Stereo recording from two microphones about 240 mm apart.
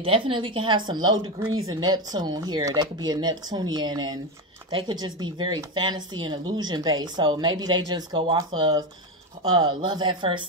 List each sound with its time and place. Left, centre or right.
0.0 s speech: right